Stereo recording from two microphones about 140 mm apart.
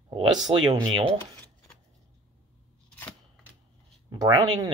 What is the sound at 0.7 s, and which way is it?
Speech, 30° right (ahead or behind).